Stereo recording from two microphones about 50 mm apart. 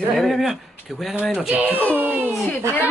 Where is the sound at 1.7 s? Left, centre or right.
Left.